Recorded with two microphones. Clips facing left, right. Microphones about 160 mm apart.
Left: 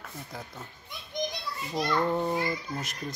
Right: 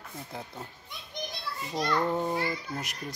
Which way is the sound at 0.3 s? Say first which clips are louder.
Right 3 dB; 25° right (ahead or behind).